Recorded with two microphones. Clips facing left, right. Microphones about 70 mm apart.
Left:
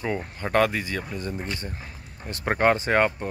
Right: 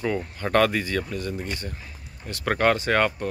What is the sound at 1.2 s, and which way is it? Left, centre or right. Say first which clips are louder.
Speech: right 1 dB; left.